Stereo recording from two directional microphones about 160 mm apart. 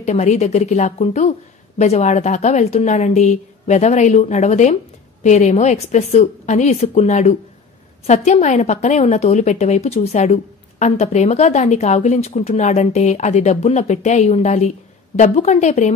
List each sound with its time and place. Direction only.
0.0 s a woman's voice: 45° left (ahead or behind)